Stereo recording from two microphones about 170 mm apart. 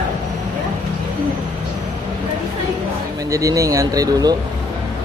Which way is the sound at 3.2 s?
20° right (ahead or behind).